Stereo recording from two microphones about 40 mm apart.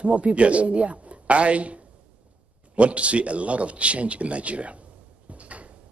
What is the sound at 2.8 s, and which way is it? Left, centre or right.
A man's voice, right.